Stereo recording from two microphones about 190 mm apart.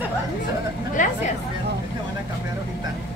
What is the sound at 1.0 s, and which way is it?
Speech, 40° left (ahead or behind).